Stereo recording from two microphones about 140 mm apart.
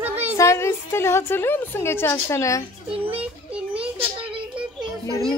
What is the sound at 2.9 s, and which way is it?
Speech, 40° right (ahead or behind).